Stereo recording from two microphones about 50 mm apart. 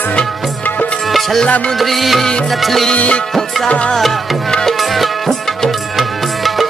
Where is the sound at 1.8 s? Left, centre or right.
Centre.